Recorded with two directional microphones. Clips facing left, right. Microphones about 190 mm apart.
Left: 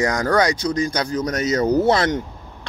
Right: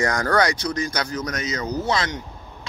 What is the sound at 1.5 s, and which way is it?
Speech, 50° left (ahead or behind).